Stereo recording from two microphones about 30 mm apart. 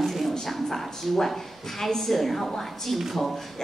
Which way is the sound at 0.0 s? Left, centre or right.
Centre.